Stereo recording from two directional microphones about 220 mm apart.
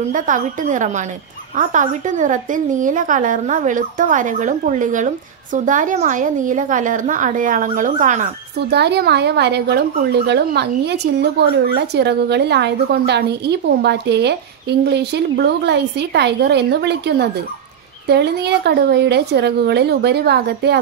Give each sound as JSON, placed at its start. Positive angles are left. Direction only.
{"t": 0.1, "sound": "a woman's voice", "side_deg": -35}
{"t": 8.5, "sound": "a woman's voice", "side_deg": -50}